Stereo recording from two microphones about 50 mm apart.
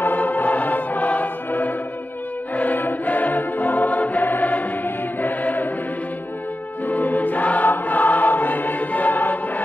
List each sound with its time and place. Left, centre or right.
0.0 s music: left
6.9 s choir: left